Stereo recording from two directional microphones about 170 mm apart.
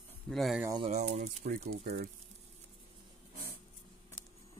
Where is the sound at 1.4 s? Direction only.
55° right (ahead or behind).